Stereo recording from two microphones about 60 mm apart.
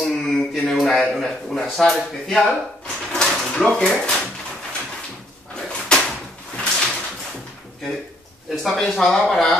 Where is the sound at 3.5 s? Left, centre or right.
Centre.